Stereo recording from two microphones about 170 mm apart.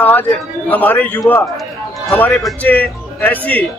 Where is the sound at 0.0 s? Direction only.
10° left (ahead or behind).